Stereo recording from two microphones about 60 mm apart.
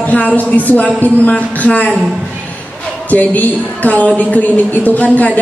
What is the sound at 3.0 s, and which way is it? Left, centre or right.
A woman's voice, left.